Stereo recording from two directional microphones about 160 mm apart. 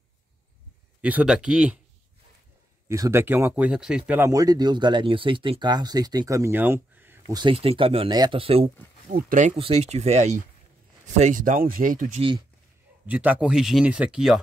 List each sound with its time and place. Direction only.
1.0 s speech: 5° right (ahead or behind)
2.9 s speech: 15° right (ahead or behind)
4.3 s speech: 25° right (ahead or behind)
7.3 s speech: 35° right (ahead or behind)
9.1 s speech: 55° right (ahead or behind)
9.6 s speech: 40° right (ahead or behind); by 12.2 s 55° right (ahead or behind)
12.2 s speech: 30° right (ahead or behind)
13.0 s speech: 10° right (ahead or behind)